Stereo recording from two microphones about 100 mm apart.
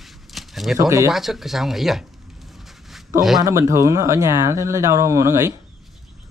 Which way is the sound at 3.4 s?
30° right (ahead or behind).